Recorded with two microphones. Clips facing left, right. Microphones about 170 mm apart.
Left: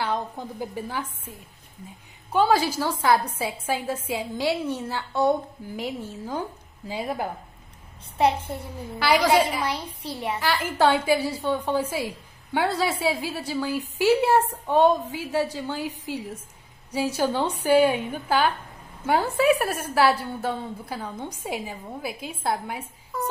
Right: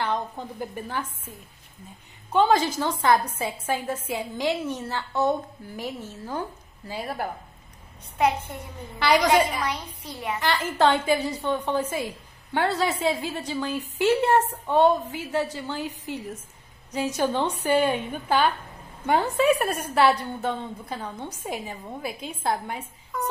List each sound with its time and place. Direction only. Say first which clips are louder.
0.0 s a woman's voice: even; 10° left (ahead or behind)
2.3 s a woman's voice: even; 10° left (ahead or behind)
8.2 s a child's voice: left 1 dB; 30° left (ahead or behind)
8.5 s a woman's voice: left 1 dB; 5° left (ahead or behind)
9.7 s a woman's voice: left 2 dB; 30° left (ahead or behind)
10.4 s a woman's voice: even; 10° left (ahead or behind)